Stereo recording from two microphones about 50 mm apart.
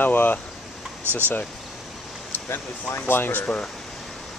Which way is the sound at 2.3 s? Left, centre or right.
Left.